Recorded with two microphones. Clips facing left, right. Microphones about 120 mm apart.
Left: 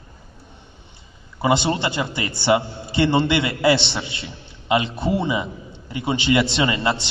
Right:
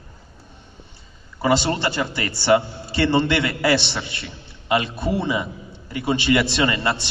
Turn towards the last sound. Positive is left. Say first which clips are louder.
# even
turn(degrees=25)  # may be behind; listen again after turning